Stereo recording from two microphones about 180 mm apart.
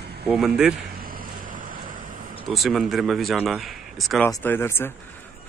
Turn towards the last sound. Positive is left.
turn(degrees=15)  # may be behind; listen again after turning